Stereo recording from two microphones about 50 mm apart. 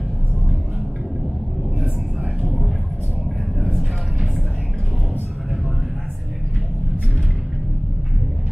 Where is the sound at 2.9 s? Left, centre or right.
Right.